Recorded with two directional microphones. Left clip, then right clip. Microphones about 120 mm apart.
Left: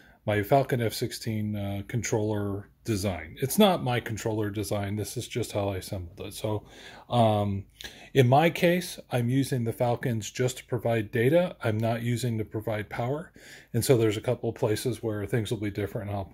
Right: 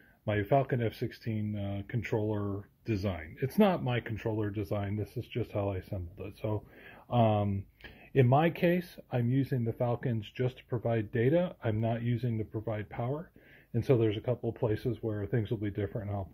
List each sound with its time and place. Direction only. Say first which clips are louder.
0.2 s speech: left 5 dB; 30° left (ahead or behind)
2.5 s speech: left 4 dB; 30° left (ahead or behind)